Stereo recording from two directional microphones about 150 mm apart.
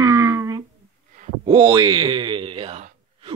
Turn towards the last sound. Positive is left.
turn(degrees=-45)  # may be behind; listen again after turning